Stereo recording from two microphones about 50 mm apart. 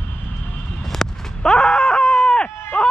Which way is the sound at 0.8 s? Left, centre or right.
Centre.